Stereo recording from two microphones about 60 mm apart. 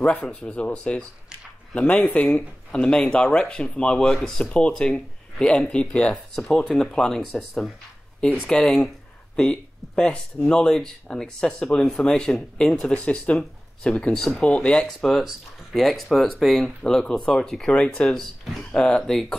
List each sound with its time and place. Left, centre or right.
0.2 s speech: centre
6.6 s speech: centre
7.3 s speech: centre
17.6 s speech: centre
18.1 s speech: centre